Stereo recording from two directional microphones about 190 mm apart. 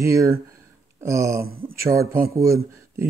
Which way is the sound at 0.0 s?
15° right (ahead or behind).